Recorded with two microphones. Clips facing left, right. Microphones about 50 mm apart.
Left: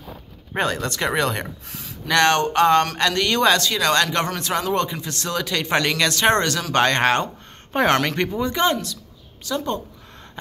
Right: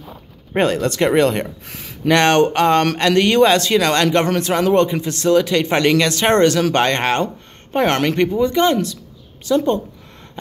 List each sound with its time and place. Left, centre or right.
0.5 s speech: centre
9.4 s speech: centre